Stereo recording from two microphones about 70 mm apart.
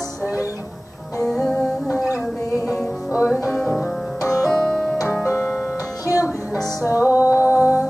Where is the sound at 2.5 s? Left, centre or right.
Left.